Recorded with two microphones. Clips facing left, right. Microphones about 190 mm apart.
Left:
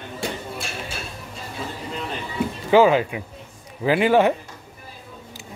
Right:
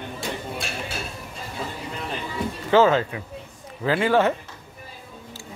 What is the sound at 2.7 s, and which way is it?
Speech, 15° left (ahead or behind).